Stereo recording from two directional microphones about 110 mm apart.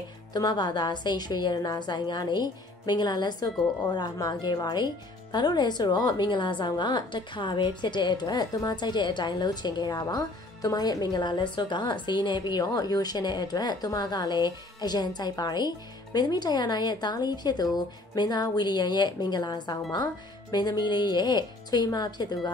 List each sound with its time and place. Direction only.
0.3 s a woman's voice: 40° left (ahead or behind)